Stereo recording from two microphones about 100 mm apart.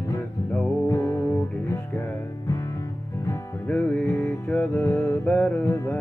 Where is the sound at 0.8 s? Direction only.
30° left (ahead or behind).